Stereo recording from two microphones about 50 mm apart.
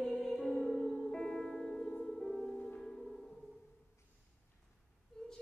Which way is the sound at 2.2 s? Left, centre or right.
Centre.